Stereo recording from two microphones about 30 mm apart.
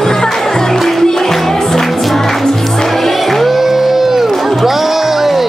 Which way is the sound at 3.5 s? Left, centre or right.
Centre.